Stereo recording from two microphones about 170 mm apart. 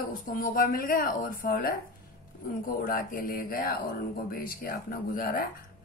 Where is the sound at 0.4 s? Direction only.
60° left (ahead or behind).